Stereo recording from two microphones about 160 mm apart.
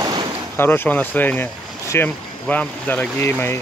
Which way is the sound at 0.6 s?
15° left (ahead or behind).